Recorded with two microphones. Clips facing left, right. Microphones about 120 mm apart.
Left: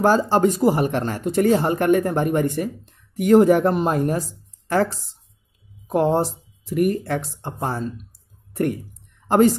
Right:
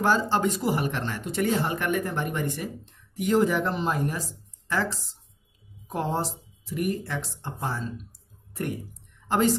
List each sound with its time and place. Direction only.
0.0 s speech: 40° left (ahead or behind)
9.3 s speech: 45° left (ahead or behind)